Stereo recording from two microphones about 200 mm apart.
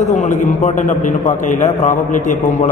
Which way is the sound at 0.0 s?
35° left (ahead or behind).